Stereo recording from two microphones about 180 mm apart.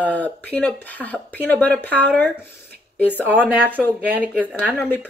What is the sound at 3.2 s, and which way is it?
Speech, 10° right (ahead or behind).